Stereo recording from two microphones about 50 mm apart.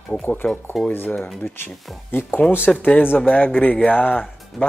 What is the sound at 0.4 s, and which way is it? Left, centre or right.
Speech, left.